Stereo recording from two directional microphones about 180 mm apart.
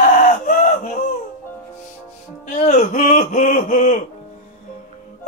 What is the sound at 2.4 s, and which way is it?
Speech, 45° left (ahead or behind).